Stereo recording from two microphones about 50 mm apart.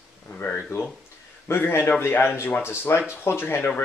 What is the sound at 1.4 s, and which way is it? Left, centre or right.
Speech, left.